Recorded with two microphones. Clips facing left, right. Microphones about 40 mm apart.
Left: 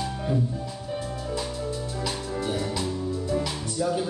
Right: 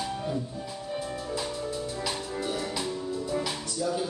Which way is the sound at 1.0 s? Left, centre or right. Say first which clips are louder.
Left 1 dB; centre.